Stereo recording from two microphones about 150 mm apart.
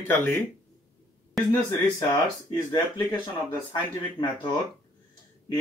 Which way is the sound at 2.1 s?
25° left (ahead or behind).